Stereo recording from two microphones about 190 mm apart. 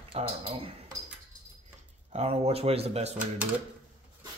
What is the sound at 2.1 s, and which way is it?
Speech, 35° right (ahead or behind).